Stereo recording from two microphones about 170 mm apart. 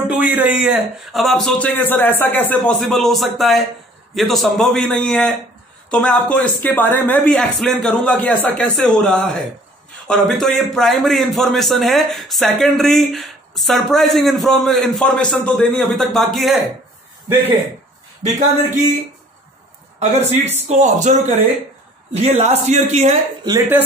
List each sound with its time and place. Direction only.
0.1 s a man's voice: 10° right (ahead or behind)
17.3 s speech: 10° right (ahead or behind)
20.2 s speech: 10° right (ahead or behind)
20.6 s a man's voice: 45° right (ahead or behind)